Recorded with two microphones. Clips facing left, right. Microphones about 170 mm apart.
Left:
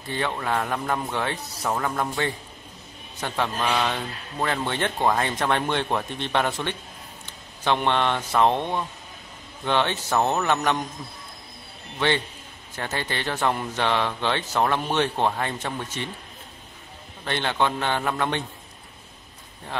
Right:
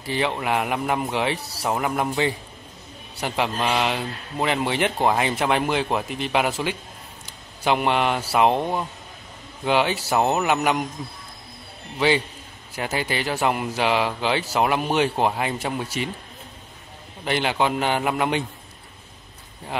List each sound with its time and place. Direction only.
0.4 s a man's voice: 15° right (ahead or behind)
1.4 s speech: 30° right (ahead or behind)
1.7 s a man's voice: 15° right (ahead or behind)
12.7 s a man's voice: 10° right (ahead or behind)
17.2 s a man's voice: 10° right (ahead or behind)